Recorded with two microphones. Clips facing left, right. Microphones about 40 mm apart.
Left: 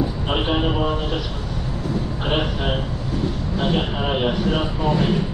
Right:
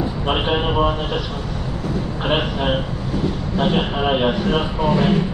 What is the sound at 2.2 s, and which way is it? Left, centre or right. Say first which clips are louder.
Speech: right 3 dB; centre.